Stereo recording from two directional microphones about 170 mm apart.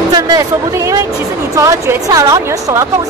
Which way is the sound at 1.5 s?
20° right (ahead or behind).